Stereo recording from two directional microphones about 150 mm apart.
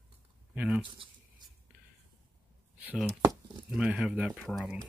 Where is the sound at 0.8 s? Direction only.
35° right (ahead or behind).